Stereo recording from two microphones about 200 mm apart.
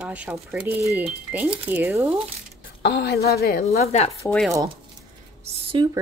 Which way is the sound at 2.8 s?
55° left (ahead or behind).